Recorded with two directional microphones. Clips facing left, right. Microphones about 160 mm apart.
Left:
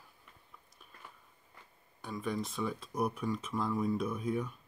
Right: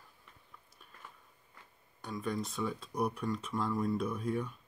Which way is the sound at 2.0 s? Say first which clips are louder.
Even; 5° left (ahead or behind).